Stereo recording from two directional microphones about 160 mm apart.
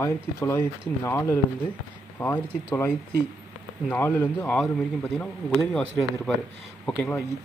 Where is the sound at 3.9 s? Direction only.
15° left (ahead or behind).